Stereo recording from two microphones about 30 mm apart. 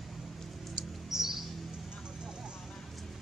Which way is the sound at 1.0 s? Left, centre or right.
Centre.